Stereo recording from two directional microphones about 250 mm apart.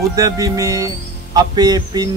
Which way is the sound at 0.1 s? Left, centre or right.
Centre.